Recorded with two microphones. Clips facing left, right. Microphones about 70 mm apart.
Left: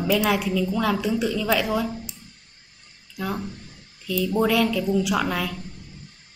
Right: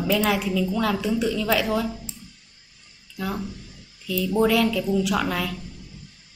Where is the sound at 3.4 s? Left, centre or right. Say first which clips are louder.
Even; left.